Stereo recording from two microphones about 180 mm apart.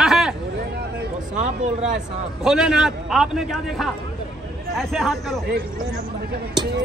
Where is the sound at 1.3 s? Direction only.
40° right (ahead or behind).